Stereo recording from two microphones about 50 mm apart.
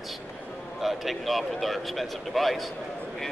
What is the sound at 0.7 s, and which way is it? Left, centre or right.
Speech, centre.